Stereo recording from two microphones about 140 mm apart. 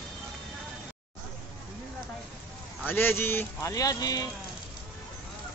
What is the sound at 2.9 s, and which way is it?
Speech, 15° left (ahead or behind).